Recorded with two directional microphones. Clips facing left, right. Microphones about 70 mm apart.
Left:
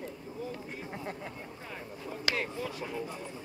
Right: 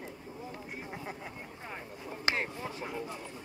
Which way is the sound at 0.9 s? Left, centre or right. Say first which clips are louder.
Left 3 dB; centre.